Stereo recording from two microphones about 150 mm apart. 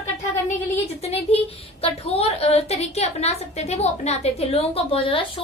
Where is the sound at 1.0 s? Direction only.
40° left (ahead or behind).